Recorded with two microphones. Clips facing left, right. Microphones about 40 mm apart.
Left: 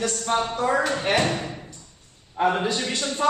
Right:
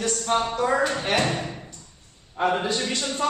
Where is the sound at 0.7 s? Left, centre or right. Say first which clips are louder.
Left 1 dB; left.